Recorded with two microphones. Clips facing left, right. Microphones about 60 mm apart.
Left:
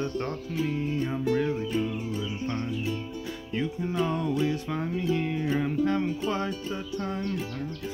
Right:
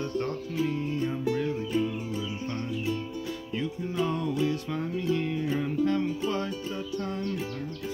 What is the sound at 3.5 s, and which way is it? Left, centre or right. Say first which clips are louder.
Music: left 3 dB; left.